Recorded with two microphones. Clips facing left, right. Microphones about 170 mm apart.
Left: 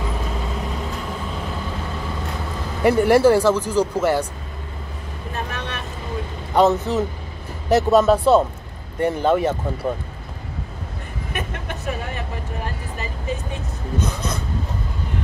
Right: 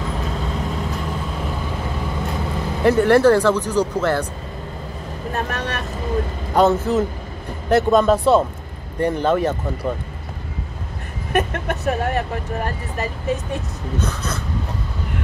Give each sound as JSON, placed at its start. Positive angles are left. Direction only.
{"t": 2.8, "sound": "speech", "side_deg": 10}
{"t": 5.3, "sound": "vehicle", "side_deg": -45}
{"t": 6.5, "sound": "speech", "side_deg": 0}
{"t": 11.3, "sound": "speech", "side_deg": -55}
{"t": 13.9, "sound": "speech", "side_deg": 10}